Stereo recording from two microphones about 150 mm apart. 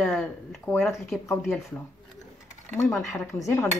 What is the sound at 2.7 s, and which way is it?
Speech, 15° left (ahead or behind).